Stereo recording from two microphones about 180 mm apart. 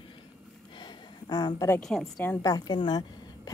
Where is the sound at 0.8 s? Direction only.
25° left (ahead or behind).